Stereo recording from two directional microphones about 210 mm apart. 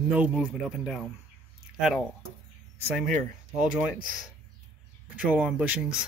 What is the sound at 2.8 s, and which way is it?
Speech, centre (ahead or behind).